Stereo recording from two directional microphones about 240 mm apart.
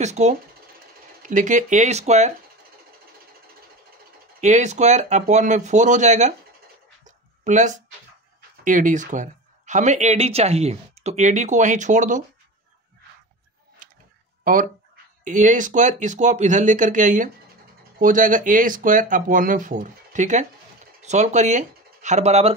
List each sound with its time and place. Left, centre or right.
0.0 s speech: right
4.4 s speech: right
7.1 s dog: right
8.6 s speech: right
13.8 s a sound: right
14.4 s speech: right